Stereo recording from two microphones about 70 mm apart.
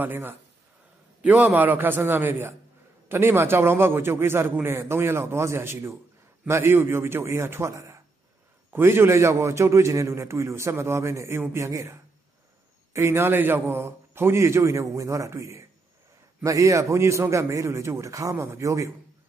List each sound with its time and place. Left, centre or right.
0.0 s a man's voice: right